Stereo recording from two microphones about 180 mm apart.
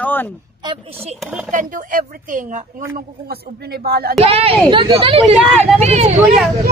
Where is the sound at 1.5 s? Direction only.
45° right (ahead or behind).